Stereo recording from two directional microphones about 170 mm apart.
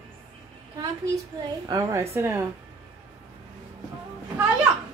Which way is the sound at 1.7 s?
20° right (ahead or behind).